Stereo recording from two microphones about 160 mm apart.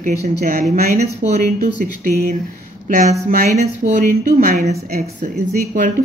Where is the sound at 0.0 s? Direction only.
50° right (ahead or behind).